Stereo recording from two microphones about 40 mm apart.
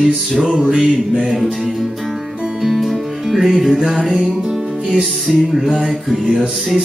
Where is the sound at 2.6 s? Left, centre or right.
Centre.